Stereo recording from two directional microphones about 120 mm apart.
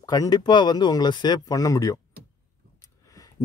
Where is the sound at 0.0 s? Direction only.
30° left (ahead or behind).